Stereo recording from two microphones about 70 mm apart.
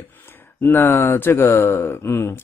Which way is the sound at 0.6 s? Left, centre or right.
Left.